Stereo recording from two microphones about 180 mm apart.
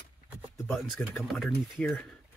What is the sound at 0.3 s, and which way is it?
Speech, centre (ahead or behind).